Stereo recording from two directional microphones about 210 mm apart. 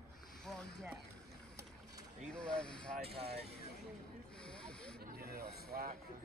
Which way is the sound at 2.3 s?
5° left (ahead or behind).